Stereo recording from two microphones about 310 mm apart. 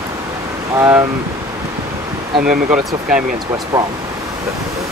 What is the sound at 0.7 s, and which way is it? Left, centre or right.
Speech, centre.